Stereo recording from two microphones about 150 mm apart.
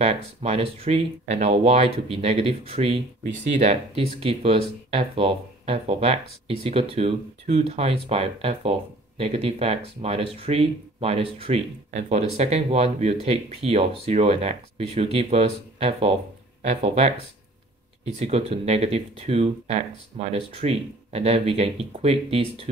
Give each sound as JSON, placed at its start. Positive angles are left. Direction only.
{"t": 0.0, "sound": "speech", "side_deg": -45}